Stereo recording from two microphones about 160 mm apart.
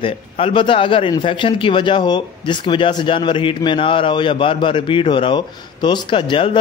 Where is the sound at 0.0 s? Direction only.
35° left (ahead or behind).